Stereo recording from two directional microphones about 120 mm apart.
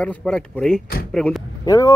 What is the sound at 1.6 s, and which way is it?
Speech, 30° left (ahead or behind).